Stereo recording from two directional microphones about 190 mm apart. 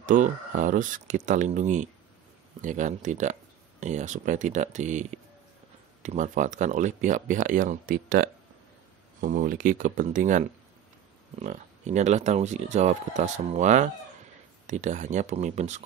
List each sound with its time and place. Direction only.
0.0 s speech: 45° right (ahead or behind)